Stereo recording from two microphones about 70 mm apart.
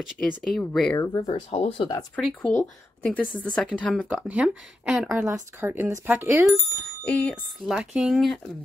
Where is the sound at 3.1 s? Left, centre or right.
Centre.